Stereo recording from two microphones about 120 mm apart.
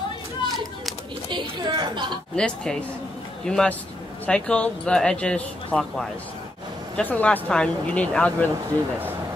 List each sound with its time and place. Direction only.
1.3 s a woman's voice: 35° right (ahead or behind)
2.3 s speech: 5° left (ahead or behind)